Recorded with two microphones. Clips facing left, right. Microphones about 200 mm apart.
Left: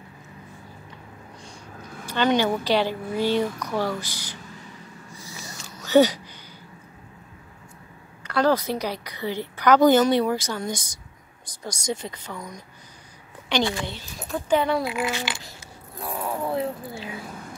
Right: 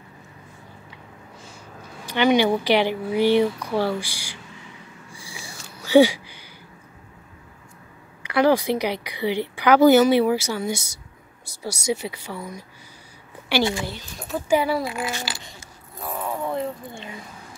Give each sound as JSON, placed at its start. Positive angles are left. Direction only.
{"t": 2.0, "sound": "speech", "side_deg": -15}
{"t": 5.1, "sound": "a sound", "side_deg": -10}
{"t": 8.2, "sound": "speech", "side_deg": -10}
{"t": 13.7, "sound": "speech", "side_deg": 0}
{"t": 14.9, "sound": "speech", "side_deg": -35}
{"t": 16.0, "sound": "zipper", "side_deg": 0}